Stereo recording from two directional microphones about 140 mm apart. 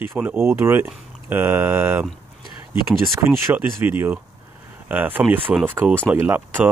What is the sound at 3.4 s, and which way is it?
Speech, 15° right (ahead or behind).